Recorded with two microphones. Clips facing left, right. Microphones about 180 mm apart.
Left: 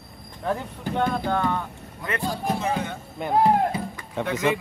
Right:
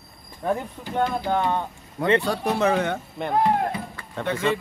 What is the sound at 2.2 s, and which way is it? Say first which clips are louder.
Speech: right 4 dB; 70° right (ahead or behind).